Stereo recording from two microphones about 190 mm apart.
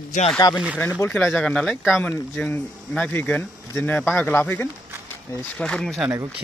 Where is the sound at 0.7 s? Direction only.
5° left (ahead or behind).